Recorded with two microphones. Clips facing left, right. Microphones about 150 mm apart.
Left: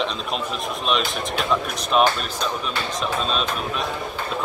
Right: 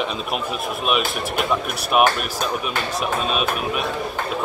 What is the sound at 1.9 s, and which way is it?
Speech, 10° right (ahead or behind).